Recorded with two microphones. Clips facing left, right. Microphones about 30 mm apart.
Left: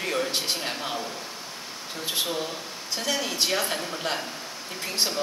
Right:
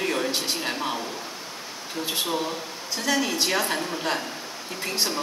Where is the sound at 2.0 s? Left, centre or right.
Centre.